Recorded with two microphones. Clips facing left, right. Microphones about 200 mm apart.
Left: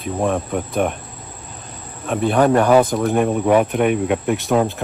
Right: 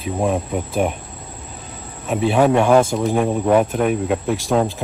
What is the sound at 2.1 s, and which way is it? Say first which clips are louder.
Speech: even; 5° right (ahead or behind).